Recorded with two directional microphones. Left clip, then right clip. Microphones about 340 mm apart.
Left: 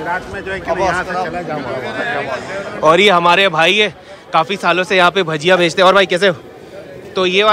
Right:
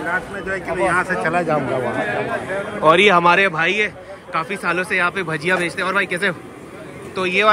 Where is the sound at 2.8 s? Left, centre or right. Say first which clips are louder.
Left 3 dB; centre.